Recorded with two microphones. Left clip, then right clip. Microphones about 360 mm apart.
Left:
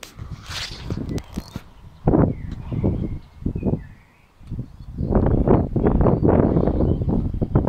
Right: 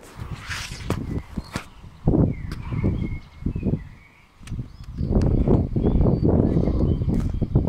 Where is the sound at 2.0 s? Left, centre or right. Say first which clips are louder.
Left 4 dB; left.